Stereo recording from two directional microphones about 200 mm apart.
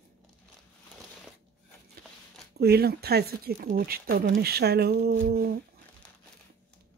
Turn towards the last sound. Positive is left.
turn(degrees=-50)  # may be behind; listen again after turning